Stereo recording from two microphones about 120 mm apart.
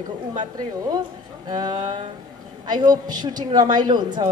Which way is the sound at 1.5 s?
35° right (ahead or behind).